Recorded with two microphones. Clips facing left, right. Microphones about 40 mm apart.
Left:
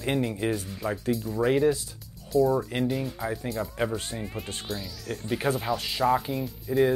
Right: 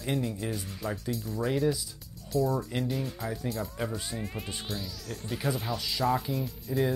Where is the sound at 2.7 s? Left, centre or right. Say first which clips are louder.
Left 4 dB; left.